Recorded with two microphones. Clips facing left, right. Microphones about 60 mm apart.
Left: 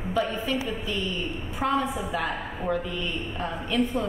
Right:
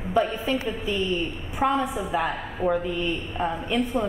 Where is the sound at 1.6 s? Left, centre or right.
Centre.